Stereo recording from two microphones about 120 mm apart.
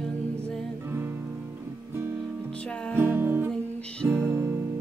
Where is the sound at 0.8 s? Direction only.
20° right (ahead or behind).